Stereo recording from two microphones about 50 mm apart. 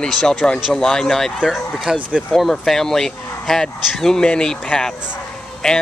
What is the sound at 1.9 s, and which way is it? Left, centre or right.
Speech, centre.